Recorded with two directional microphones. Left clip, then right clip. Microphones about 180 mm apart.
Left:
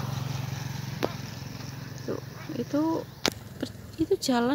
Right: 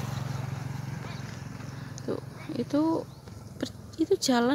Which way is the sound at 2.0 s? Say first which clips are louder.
Right 1 dB; 15° right (ahead or behind).